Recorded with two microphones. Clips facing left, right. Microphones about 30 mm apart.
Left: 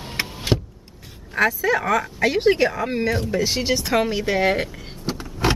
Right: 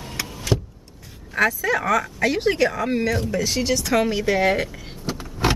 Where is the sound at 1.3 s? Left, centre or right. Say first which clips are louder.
Left 1 dB; centre.